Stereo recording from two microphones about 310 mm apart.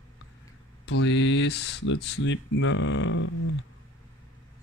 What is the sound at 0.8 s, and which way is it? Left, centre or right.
Speech, left.